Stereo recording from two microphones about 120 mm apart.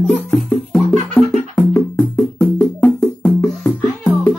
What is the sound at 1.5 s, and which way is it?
Music, 30° left (ahead or behind).